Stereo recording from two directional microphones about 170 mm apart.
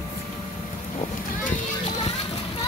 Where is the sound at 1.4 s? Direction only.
40° left (ahead or behind).